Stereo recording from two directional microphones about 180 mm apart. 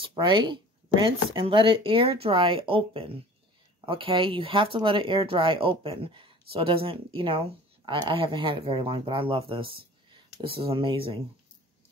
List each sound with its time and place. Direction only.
0.1 s speech: 25° right (ahead or behind)